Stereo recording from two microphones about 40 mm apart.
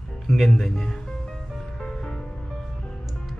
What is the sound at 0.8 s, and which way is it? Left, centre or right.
Music, centre.